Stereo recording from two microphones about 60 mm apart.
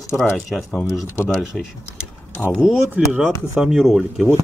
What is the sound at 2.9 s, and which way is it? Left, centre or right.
Speech, centre.